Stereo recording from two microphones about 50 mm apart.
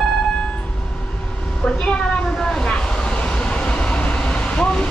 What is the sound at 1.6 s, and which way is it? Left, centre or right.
Vehicle, centre.